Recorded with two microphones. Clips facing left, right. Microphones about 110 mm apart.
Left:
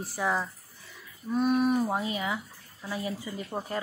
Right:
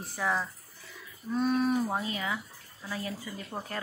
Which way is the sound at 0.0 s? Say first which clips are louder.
Left 2 dB; 10° left (ahead or behind).